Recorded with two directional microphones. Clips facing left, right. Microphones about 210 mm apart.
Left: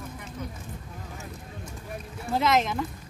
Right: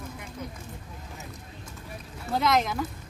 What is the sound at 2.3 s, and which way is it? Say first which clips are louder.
Speech: left 1 dB; centre (ahead or behind).